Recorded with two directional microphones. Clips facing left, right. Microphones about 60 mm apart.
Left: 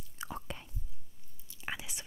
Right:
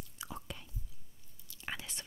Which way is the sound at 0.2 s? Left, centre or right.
Left.